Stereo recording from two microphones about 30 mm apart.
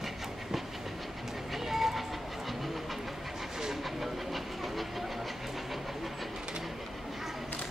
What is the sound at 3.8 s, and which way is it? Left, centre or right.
Vehicle, centre.